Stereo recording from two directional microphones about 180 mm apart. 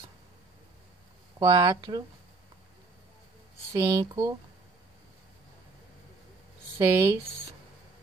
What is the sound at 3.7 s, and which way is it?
Speech, 20° right (ahead or behind).